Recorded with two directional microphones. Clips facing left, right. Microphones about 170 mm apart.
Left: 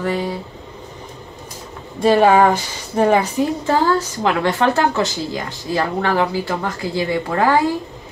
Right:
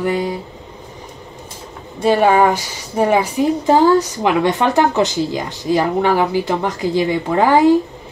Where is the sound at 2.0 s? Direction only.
Centre (ahead or behind); by 7.6 s 20° right (ahead or behind).